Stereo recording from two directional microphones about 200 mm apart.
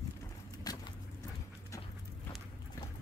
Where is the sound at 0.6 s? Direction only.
20° left (ahead or behind).